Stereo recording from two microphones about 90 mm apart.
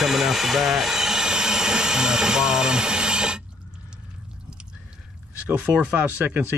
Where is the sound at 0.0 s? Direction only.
Centre (ahead or behind).